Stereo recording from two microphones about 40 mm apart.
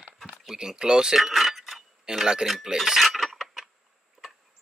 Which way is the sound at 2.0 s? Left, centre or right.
Centre.